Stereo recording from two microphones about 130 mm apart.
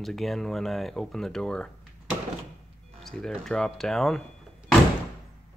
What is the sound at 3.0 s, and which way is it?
Speech, 5° left (ahead or behind).